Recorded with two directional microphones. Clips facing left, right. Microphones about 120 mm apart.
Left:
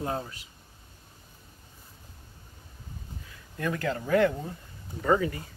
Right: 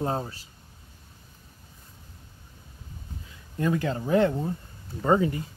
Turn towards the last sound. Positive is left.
turn(degrees=-25)  # may be behind; listen again after turning